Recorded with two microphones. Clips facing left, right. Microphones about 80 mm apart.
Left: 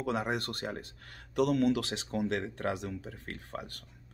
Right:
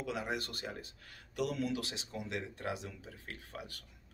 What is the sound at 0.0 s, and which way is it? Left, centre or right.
Speech, left.